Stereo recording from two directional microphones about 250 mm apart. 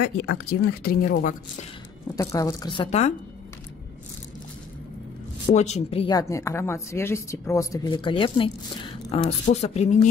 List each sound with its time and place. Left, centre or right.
0.0 s speech: left
2.1 s speech: centre
5.5 s speech: left